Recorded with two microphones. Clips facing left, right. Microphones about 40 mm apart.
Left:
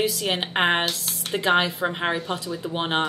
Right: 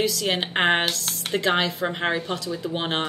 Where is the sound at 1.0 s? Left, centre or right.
Right.